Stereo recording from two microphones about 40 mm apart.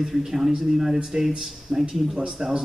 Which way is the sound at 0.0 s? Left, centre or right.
Centre.